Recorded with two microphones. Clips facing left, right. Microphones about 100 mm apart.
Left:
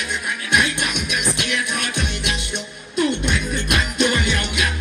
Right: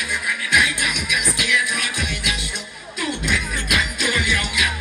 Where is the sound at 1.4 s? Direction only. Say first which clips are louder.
Right 1 dB; 25° left (ahead or behind).